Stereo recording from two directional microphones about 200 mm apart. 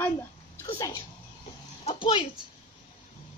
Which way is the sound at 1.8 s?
25° left (ahead or behind).